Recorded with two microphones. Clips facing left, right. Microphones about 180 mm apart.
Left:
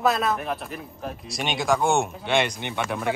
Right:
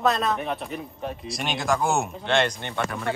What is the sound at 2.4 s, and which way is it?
Speech, 10° left (ahead or behind).